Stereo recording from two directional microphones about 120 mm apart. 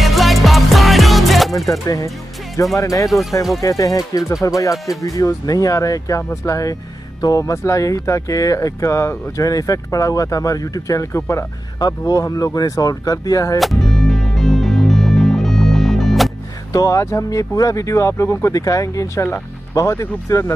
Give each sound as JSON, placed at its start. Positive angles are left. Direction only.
{"t": 0.0, "sound": "music", "side_deg": 0}
{"t": 1.7, "sound": "speech", "side_deg": 30}
{"t": 3.1, "sound": "speech", "side_deg": 0}
{"t": 3.6, "sound": "speech", "side_deg": 30}
{"t": 13.6, "sound": "music", "side_deg": 0}
{"t": 16.7, "sound": "speech", "side_deg": 30}